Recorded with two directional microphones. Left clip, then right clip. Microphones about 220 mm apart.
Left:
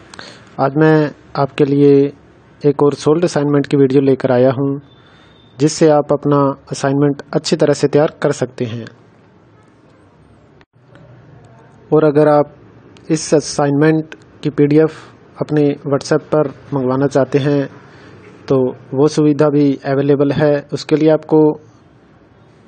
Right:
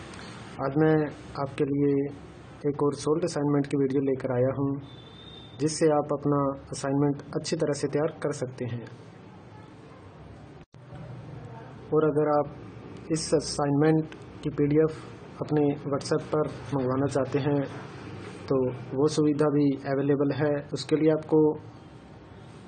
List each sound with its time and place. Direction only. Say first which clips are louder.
0.1 s a man's voice: left 9 dB; 40° left (ahead or behind)
11.9 s a man's voice: left 13 dB; 40° left (ahead or behind)